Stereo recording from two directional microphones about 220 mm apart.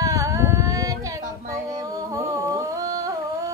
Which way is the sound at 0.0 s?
15° right (ahead or behind).